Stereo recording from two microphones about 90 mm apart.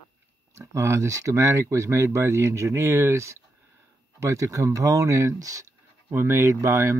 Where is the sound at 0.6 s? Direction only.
35° right (ahead or behind).